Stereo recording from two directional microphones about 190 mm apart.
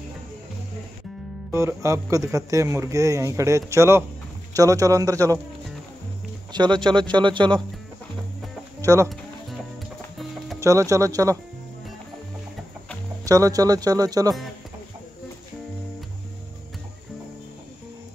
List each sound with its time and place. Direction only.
1.5 s speech: 15° right (ahead or behind)
6.5 s speech: 25° right (ahead or behind)
8.8 s speech: 15° right (ahead or behind)
10.6 s speech: 15° right (ahead or behind)
13.2 s speech: 20° right (ahead or behind)